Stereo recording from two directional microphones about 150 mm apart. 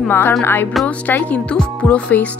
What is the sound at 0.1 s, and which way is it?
Speech, 15° left (ahead or behind).